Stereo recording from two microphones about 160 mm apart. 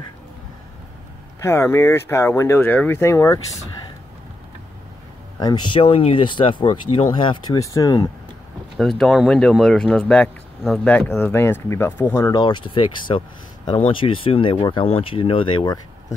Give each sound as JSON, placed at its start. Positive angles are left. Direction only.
{"t": 1.4, "sound": "speech", "side_deg": 15}
{"t": 5.4, "sound": "speech", "side_deg": 25}
{"t": 8.7, "sound": "speech", "side_deg": 0}
{"t": 12.3, "sound": "speech", "side_deg": 25}